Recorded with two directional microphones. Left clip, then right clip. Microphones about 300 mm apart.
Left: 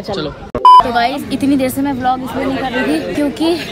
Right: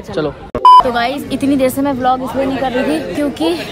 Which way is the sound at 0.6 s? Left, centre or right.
Centre.